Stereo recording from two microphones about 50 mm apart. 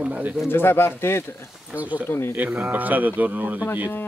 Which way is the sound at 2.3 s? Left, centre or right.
Right.